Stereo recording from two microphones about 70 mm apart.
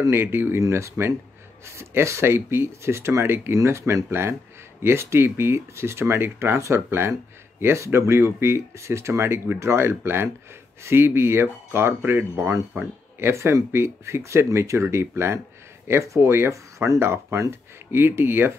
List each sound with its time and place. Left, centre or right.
0.0 s speech: right